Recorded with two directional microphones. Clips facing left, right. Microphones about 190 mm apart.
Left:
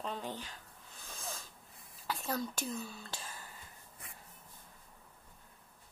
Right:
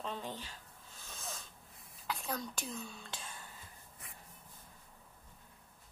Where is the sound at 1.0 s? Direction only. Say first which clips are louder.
Left 2 dB; centre (ahead or behind).